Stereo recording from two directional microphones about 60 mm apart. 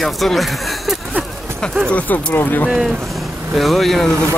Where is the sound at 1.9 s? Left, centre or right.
Left.